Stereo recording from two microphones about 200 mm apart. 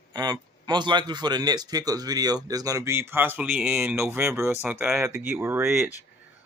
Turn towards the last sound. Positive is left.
turn(degrees=-10)  # may be behind; listen again after turning